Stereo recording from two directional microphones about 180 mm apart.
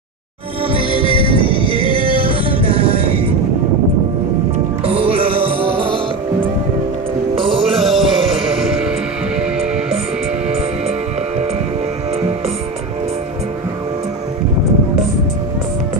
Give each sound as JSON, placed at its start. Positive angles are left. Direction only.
{"t": 0.7, "sound": "music", "side_deg": -30}
{"t": 4.8, "sound": "music", "side_deg": -30}
{"t": 7.8, "sound": "music", "side_deg": 0}